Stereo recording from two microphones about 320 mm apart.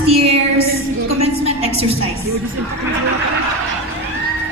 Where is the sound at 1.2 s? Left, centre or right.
Centre.